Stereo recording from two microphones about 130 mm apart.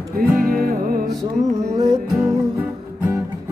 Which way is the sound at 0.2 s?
90° right.